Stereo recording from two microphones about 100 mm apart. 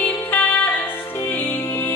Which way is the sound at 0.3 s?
15° left (ahead or behind).